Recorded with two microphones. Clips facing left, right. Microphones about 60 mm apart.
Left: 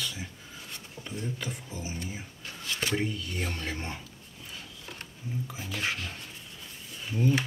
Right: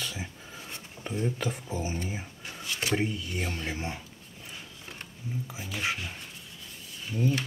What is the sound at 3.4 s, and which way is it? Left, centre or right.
Speech, centre.